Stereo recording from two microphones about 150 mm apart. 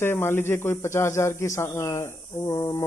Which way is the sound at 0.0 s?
15° left (ahead or behind).